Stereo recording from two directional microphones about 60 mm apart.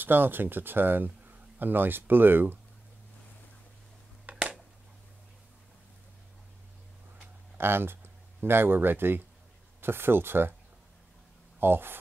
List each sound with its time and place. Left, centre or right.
0.0 s speech: right
4.3 s a sound: right
7.5 s speech: right
11.6 s speech: right